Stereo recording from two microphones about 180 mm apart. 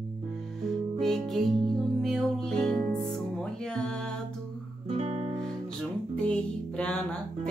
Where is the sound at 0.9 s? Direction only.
Centre (ahead or behind).